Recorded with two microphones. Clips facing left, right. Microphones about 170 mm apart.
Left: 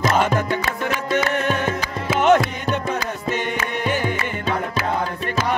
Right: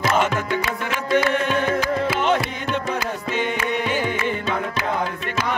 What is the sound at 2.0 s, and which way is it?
Music, 45° left (ahead or behind).